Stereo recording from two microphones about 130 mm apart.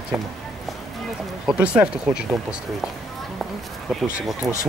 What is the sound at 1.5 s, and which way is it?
Speech, 10° right (ahead or behind).